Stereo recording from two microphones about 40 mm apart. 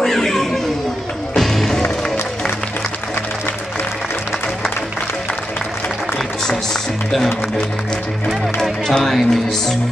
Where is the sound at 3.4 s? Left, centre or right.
Left.